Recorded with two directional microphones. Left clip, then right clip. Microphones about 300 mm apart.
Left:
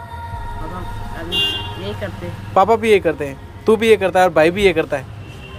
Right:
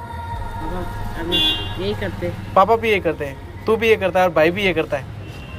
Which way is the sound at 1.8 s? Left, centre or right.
Centre.